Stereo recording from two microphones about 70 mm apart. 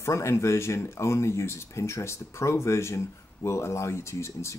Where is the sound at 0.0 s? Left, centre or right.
Left.